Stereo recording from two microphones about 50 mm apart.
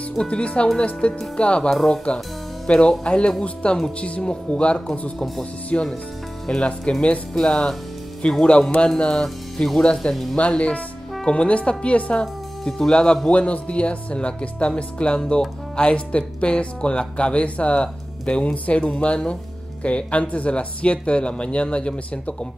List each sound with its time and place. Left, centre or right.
0.3 s speech: left
6.4 s speech: centre